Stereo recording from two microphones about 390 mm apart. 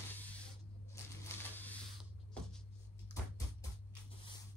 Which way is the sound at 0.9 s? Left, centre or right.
Centre.